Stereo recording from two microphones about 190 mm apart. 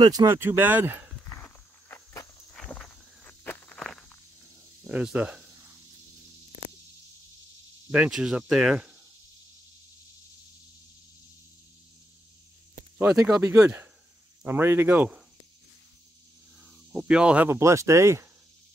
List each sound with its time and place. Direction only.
0.0 s speech: 20° right (ahead or behind)
1.3 s walk: 10° left (ahead or behind)
4.8 s cricket: 5° right (ahead or behind)
7.9 s speech: 5° right (ahead or behind)
12.9 s speech: 15° right (ahead or behind)
16.9 s speech: 5° right (ahead or behind)